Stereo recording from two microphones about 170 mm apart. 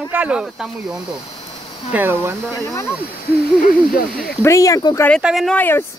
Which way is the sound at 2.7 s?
15° left (ahead or behind).